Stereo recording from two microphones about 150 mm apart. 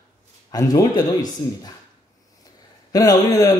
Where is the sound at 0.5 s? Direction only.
25° left (ahead or behind).